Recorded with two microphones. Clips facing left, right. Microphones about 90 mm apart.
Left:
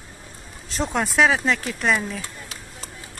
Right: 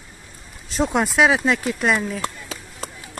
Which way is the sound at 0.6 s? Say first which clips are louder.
Right 4 dB; 5° right (ahead or behind).